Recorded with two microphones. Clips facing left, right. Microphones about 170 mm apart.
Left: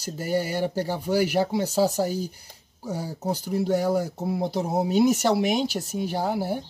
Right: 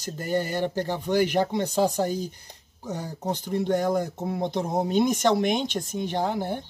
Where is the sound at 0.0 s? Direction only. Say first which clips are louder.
Left 1 dB; 10° left (ahead or behind).